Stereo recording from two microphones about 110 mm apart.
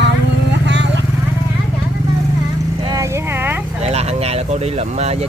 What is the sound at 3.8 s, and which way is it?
Speech, 75° right (ahead or behind).